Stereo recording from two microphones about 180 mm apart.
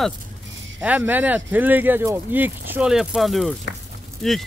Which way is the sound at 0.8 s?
10° right (ahead or behind).